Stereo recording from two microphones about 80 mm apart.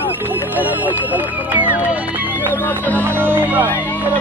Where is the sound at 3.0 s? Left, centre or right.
Right.